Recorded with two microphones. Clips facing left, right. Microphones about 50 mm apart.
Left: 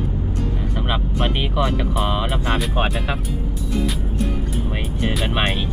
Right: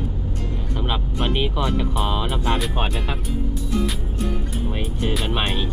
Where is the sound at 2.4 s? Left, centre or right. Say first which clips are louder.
Left 1 dB; centre.